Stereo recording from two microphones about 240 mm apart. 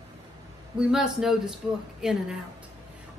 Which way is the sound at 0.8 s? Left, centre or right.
Centre.